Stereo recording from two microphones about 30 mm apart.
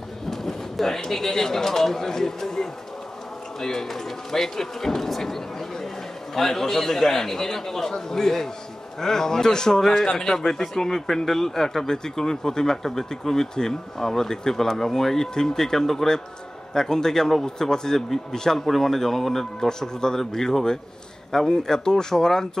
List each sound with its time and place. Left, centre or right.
0.3 s speech: centre